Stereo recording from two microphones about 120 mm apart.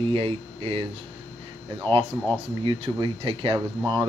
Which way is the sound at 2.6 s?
45° right (ahead or behind).